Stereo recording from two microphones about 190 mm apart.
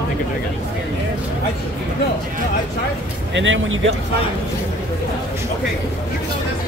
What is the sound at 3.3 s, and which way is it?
Speech, 85° right.